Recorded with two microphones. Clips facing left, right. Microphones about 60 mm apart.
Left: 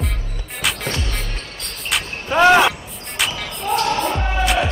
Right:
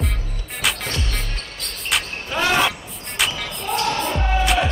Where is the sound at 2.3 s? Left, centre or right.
Left.